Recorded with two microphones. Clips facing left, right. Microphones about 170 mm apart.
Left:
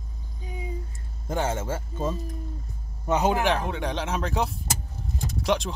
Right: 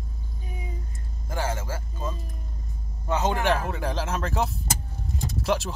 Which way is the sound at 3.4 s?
Centre (ahead or behind).